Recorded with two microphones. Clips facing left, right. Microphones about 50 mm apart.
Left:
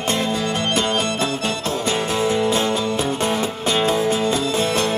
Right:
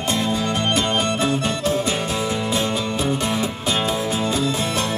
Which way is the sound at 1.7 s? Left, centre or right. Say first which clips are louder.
Left 2 dB; left.